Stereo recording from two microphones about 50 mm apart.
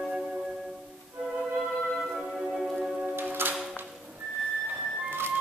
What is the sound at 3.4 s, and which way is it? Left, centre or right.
Music, right.